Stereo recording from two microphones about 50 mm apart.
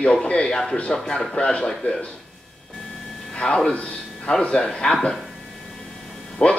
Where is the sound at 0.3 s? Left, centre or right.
Centre.